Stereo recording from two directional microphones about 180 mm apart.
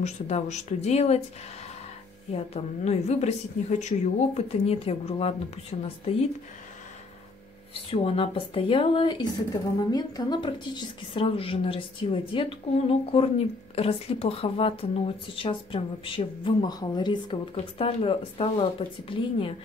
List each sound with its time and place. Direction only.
0.0 s speech: 40° left (ahead or behind)
2.3 s speech: 35° left (ahead or behind)
7.9 s speech: 30° left (ahead or behind)